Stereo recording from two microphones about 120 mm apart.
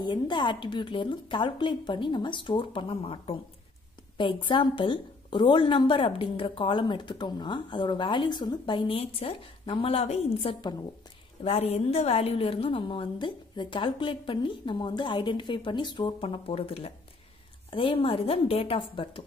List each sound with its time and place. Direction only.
0.0 s a woman's voice: 40° left (ahead or behind)